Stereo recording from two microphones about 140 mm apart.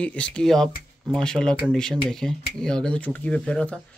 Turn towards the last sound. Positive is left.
turn(degrees=10)  # may be behind; listen again after turning